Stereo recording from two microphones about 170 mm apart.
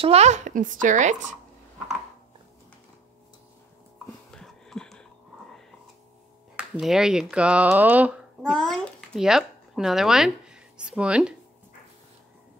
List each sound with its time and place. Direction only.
0.0 s a child's voice: 40° right (ahead or behind)
4.3 s a sound: centre (ahead or behind)
6.5 s speech: 5° right (ahead or behind)